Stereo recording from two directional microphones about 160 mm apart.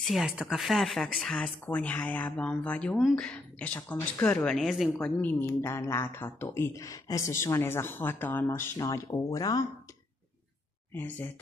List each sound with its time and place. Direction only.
0.0 s speech: centre (ahead or behind); by 9.7 s 20° left (ahead or behind)
10.9 s speech: 10° left (ahead or behind)